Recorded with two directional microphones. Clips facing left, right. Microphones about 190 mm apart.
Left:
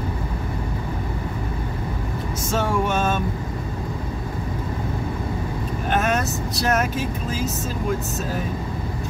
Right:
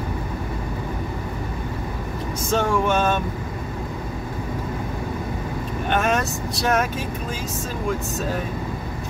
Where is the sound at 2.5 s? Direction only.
Centre (ahead or behind).